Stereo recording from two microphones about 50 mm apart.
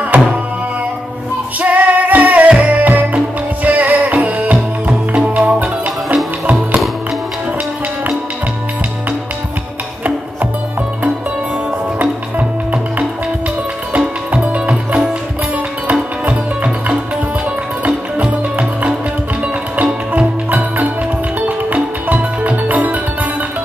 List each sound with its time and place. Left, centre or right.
0.1 s music: right
1.6 s music: right
12.0 s music: right
13.9 s music: right